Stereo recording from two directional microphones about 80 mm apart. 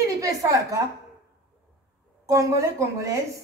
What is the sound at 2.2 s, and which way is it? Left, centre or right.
Speech, right.